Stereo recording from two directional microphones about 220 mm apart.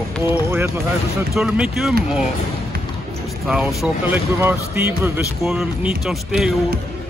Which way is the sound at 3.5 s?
Centre (ahead or behind).